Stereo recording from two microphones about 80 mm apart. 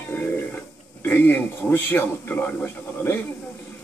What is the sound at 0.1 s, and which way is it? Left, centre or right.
Mechanisms, centre.